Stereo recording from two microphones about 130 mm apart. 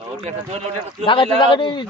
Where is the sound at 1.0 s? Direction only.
40° left (ahead or behind).